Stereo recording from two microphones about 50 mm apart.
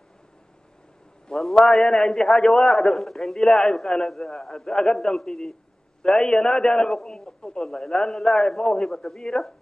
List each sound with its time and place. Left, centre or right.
1.3 s a man's voice: centre
6.9 s a man's voice: centre